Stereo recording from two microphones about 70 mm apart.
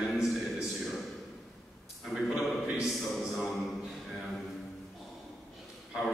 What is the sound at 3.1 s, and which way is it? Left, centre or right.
Speech, centre.